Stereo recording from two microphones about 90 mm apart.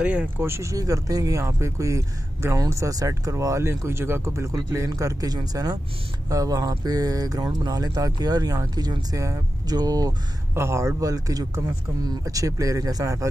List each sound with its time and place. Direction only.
0.0 s speech: 10° right (ahead or behind)
0.4 s speech: 30° right (ahead or behind)
10.5 s speech: 30° right (ahead or behind)